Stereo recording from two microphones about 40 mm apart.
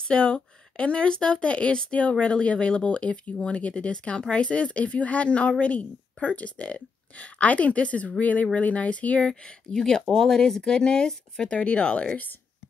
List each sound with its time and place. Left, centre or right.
0.1 s speech: left
9.7 s speech: centre
11.5 s speech: left